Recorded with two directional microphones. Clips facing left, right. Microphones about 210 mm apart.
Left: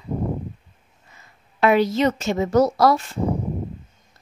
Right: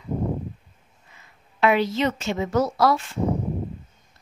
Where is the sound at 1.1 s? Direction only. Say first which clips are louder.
Left 1 dB; 40° left (ahead or behind).